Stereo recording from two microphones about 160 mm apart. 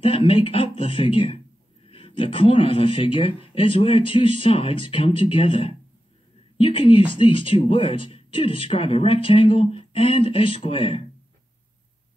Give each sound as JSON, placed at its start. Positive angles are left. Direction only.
{"t": 0.0, "sound": "speech", "side_deg": 35}